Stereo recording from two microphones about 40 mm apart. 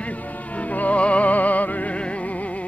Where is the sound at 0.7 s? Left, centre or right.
Left.